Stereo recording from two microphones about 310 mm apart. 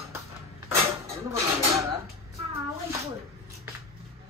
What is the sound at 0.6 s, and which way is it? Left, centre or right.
Dishes, centre.